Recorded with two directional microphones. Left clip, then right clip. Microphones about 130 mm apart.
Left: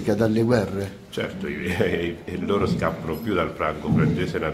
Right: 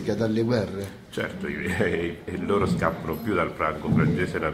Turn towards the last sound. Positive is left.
turn(degrees=15)  # may be behind; listen again after turning